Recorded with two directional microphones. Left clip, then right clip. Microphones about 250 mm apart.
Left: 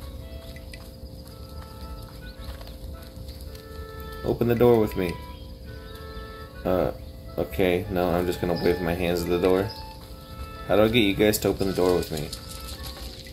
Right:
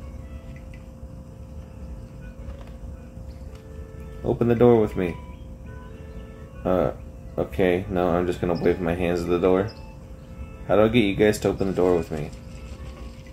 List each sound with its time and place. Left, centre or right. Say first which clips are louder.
4.2 s speech: right 2 dB; centre
6.6 s music: right 2 dB; centre
7.3 s speech: right 2 dB; centre
10.7 s speech: right 1 dB; centre